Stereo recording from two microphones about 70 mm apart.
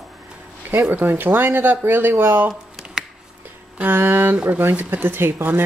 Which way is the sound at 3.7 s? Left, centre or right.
Right.